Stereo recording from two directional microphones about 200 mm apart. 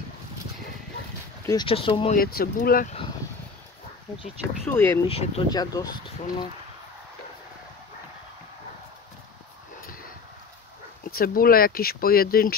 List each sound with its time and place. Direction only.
1.4 s speech: 20° left (ahead or behind)
2.1 s speech: 50° left (ahead or behind)
4.6 s speech: 10° left (ahead or behind)
5.0 s speech: 30° left (ahead or behind)
5.5 s speech: 20° left (ahead or behind)
11.1 s speech: 45° left (ahead or behind)